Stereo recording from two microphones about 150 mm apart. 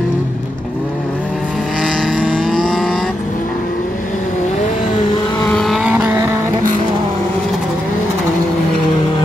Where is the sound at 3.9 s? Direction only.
55° left (ahead or behind).